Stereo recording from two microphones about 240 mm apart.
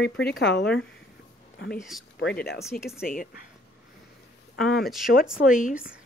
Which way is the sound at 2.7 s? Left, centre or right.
Left.